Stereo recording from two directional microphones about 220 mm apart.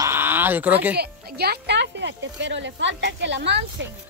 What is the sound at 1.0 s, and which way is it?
Speech, 45° right (ahead or behind).